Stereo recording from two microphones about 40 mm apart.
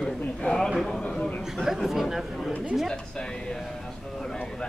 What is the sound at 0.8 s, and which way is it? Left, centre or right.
Speech, centre.